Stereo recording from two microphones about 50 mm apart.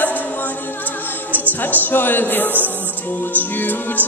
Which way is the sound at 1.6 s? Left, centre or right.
Left.